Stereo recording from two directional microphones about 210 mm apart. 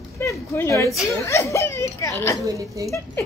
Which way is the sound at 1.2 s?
15° left (ahead or behind).